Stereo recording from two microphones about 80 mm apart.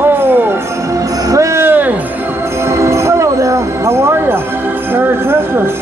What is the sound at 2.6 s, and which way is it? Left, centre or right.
Jingle bell, right.